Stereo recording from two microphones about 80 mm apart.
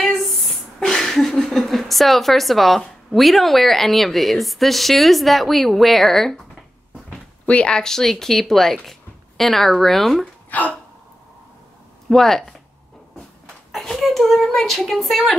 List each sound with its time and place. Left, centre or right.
0.0 s speech: centre
7.1 s speech: centre
10.5 s hiccup: centre
12.1 s speech: centre
13.7 s speech: centre